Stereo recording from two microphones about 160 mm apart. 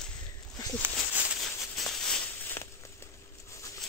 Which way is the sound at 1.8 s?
Centre (ahead or behind).